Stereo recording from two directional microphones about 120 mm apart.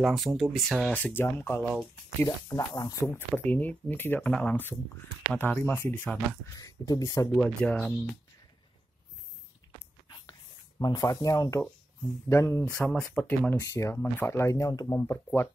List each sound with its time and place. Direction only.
0.0 s speech: centre (ahead or behind)
0.9 s speech: 15° left (ahead or behind)
1.6 s speech: 5° left (ahead or behind)
2.2 s speech: 30° left (ahead or behind)
3.3 s speech: 15° left (ahead or behind)
6.6 s speech: 30° left (ahead or behind)
7.3 s speech: 10° left (ahead or behind)
10.8 s speech: 35° left (ahead or behind)
12.6 s speech: 10° left (ahead or behind)